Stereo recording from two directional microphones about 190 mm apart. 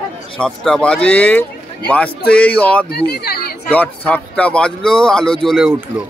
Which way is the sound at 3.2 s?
55° left (ahead or behind).